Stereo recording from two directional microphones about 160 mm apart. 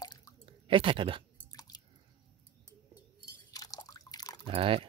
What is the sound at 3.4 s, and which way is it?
Drip, 25° left (ahead or behind).